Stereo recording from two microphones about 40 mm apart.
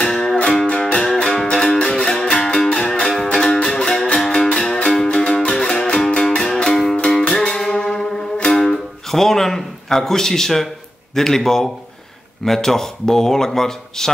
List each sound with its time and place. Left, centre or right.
0.0 s music: centre
7.4 s a sound: centre
8.5 s guitar: centre
11.1 s speech: centre